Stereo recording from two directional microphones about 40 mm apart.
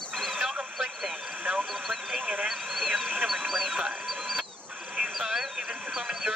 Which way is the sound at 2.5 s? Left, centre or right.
Centre.